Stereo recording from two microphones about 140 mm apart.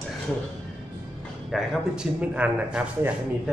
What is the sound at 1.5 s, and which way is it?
A man's voice, 5° right (ahead or behind).